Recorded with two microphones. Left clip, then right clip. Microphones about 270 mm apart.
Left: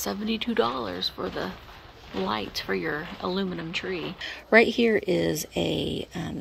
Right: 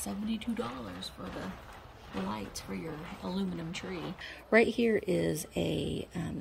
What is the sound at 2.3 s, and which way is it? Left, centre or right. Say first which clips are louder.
Speech: left 11 dB; centre.